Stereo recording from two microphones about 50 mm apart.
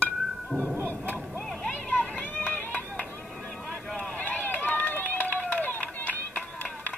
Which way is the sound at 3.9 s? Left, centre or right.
Left.